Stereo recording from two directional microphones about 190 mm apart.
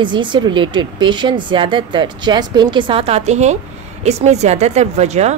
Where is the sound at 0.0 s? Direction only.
25° right (ahead or behind).